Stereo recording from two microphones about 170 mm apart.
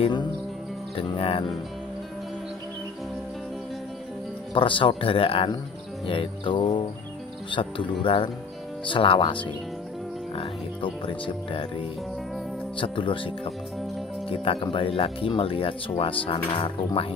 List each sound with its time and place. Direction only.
0.9 s speech: 30° left (ahead or behind)
4.6 s speech: 30° left (ahead or behind)
12.7 s speech: 30° left (ahead or behind)
14.3 s speech: 30° left (ahead or behind)